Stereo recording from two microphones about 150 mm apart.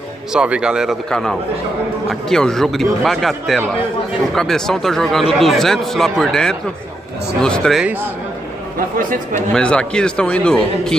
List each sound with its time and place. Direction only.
0.3 s a man's voice: 5° right (ahead or behind)
7.8 s speech: 15° right (ahead or behind)
8.7 s a man's voice: 70° right (ahead or behind)
9.5 s speech: 5° left (ahead or behind)